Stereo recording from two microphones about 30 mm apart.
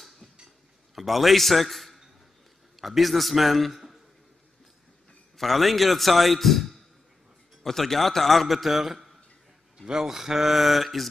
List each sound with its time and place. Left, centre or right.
0.9 s a man's voice: centre
5.4 s a man's voice: centre
9.8 s a man's voice: centre